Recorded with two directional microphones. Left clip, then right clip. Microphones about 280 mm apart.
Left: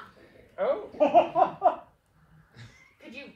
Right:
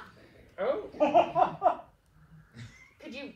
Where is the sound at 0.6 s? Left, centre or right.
Centre.